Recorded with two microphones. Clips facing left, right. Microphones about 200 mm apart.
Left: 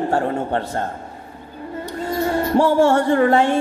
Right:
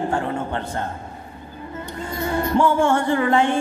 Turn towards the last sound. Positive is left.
turn(degrees=40)  # may be behind; listen again after turning